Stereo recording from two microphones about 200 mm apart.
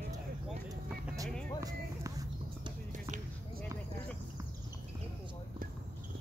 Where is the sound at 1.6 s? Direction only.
20° right (ahead or behind).